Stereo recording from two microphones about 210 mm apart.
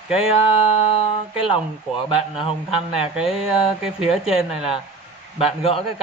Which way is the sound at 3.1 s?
Centre (ahead or behind).